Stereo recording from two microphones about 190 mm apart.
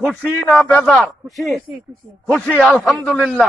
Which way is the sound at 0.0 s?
10° left (ahead or behind).